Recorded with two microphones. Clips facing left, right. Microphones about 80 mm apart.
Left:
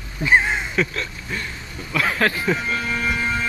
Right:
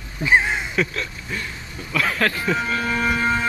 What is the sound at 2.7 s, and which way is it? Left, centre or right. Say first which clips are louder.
Speech: right 2 dB; right.